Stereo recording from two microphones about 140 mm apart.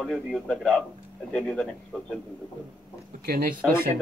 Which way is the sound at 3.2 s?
90° right.